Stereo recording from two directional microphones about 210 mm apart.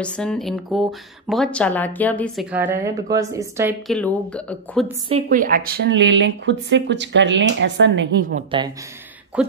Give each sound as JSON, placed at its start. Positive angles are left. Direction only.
{"t": 0.0, "sound": "speech", "side_deg": 5}
{"t": 2.5, "sound": "speech", "side_deg": -10}
{"t": 3.8, "sound": "speech", "side_deg": 5}
{"t": 5.3, "sound": "speech", "side_deg": -40}
{"t": 8.4, "sound": "speech", "side_deg": -25}
{"t": 9.4, "sound": "speech", "side_deg": -5}